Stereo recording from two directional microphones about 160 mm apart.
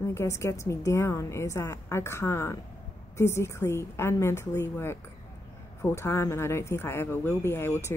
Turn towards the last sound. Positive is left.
turn(degrees=15)  # may be behind; listen again after turning